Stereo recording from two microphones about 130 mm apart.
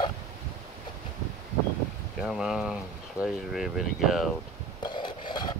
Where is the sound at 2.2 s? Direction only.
5° right (ahead or behind).